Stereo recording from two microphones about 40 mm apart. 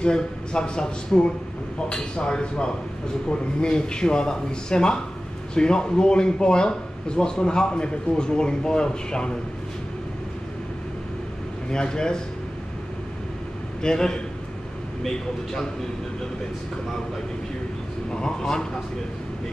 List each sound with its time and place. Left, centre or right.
0.0 s a man's voice: left
11.7 s speech: centre
13.8 s speech: centre